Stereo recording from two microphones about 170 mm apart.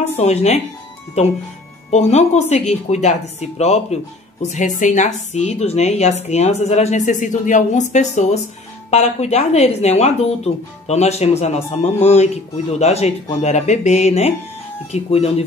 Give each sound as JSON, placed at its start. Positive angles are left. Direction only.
{"t": 0.1, "sound": "a woman's voice", "side_deg": 40}